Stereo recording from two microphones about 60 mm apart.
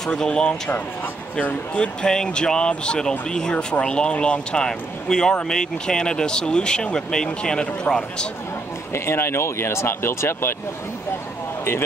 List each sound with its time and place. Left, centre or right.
0.0 s speech: centre
1.4 s speech: left
2.0 s speech: centre
8.9 s speech: left